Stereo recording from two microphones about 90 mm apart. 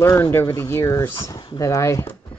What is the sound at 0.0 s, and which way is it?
Speech, 30° left (ahead or behind).